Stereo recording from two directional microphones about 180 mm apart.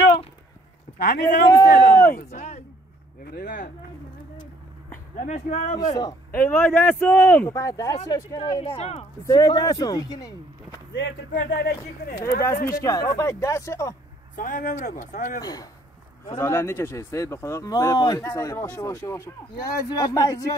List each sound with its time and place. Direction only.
0.9 s a man's voice: 60° left (ahead or behind)
2.1 s speech: 40° left (ahead or behind)
5.2 s speech: 40° left (ahead or behind)
5.9 s speech: 15° left (ahead or behind)
8.5 s speech: 30° left (ahead or behind)
9.2 s speech: 20° left (ahead or behind)
10.9 s speech: 90° left
11.3 s speech: 55° left (ahead or behind)
12.6 s speech: 20° left (ahead or behind)
14.3 s speech: 45° left (ahead or behind)
15.4 s speech: 20° left (ahead or behind)